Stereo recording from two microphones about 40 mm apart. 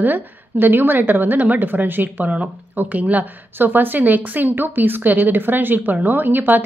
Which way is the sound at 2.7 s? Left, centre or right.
Right.